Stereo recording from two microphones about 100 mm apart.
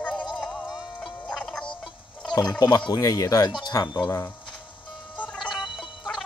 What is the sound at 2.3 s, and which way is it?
Speech, 45° left (ahead or behind).